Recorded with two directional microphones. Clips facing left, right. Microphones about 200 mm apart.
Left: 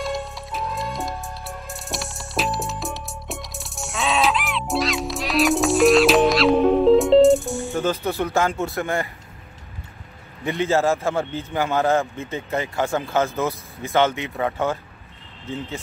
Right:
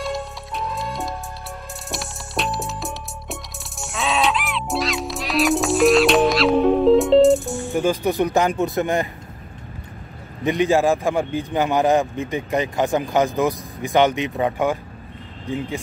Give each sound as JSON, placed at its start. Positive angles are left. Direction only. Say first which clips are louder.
{"t": 0.0, "sound": "music", "louder": "even", "side_deg": 0}
{"t": 7.7, "sound": "speech", "louder": "right 5 dB", "side_deg": -15}
{"t": 10.4, "sound": "speech", "louder": "right 3 dB", "side_deg": -15}